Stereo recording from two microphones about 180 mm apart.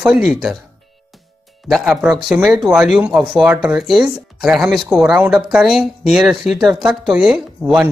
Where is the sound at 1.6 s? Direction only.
Centre (ahead or behind).